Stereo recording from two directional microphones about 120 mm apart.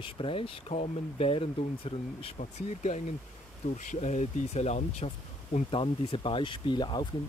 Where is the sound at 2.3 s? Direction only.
75° left (ahead or behind).